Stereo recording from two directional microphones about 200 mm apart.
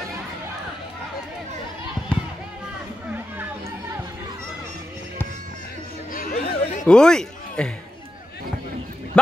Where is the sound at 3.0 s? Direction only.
10° right (ahead or behind).